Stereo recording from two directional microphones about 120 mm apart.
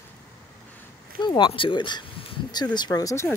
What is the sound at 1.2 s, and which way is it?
Speech, 40° left (ahead or behind).